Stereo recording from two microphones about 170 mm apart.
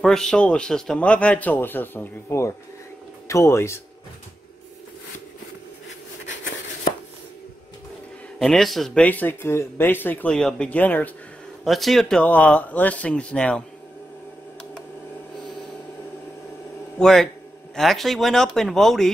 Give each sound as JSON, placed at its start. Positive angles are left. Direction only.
{"t": 0.0, "sound": "speech", "side_deg": 5}
{"t": 8.4, "sound": "speech", "side_deg": 0}
{"t": 17.0, "sound": "speech", "side_deg": 5}